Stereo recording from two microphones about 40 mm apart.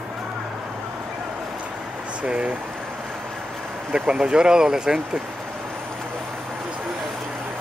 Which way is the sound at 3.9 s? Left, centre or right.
Right.